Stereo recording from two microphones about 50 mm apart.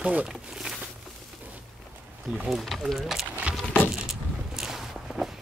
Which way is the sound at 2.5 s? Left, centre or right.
Centre.